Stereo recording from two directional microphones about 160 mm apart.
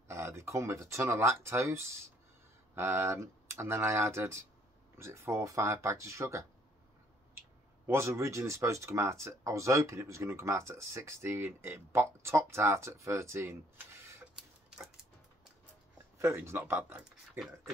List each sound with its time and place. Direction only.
0.1 s speech: 15° right (ahead or behind)
7.8 s speech: 15° right (ahead or behind)
16.2 s speech: 15° right (ahead or behind)